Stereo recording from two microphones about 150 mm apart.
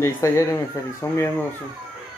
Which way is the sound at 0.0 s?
20° left (ahead or behind).